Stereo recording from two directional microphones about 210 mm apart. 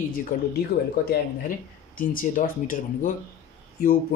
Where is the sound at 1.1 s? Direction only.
40° left (ahead or behind).